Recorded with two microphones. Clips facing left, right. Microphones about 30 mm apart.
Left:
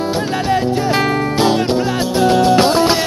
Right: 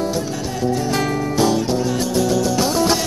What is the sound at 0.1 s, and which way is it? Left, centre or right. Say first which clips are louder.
Music: left 7 dB; left.